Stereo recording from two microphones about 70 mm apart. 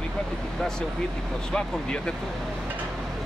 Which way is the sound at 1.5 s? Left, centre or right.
Centre.